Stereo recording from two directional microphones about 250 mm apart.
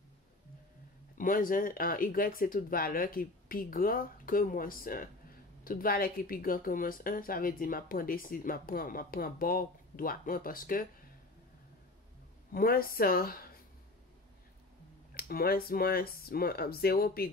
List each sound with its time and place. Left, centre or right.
1.1 s speech: left
12.5 s speech: left
15.1 s speech: left